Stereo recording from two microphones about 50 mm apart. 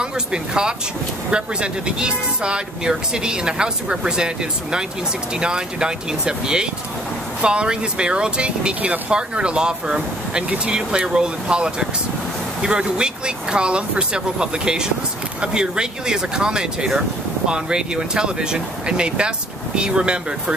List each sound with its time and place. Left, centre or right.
0.0 s speech: centre